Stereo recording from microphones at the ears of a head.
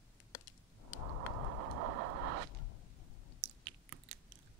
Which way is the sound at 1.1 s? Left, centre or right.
Right.